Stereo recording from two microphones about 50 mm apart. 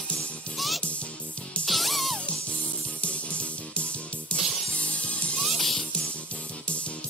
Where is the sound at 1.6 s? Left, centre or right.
Centre.